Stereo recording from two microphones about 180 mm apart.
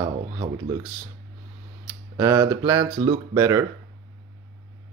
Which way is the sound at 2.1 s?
15° right (ahead or behind).